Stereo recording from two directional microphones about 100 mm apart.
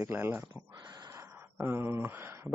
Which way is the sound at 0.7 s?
45° right (ahead or behind).